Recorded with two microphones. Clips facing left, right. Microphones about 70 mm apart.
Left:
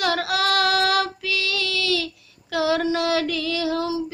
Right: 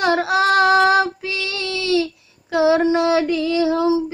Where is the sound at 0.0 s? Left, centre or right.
Right.